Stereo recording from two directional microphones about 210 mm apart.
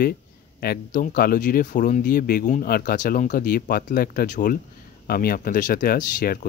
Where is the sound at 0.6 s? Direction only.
45° left (ahead or behind).